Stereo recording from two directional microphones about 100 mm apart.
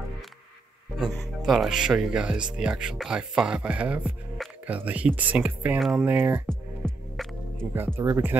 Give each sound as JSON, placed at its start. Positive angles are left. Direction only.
{"t": 1.4, "sound": "speech", "side_deg": -5}
{"t": 6.0, "sound": "speech", "side_deg": -20}
{"t": 6.4, "sound": "music", "side_deg": 5}
{"t": 7.7, "sound": "speech", "side_deg": -20}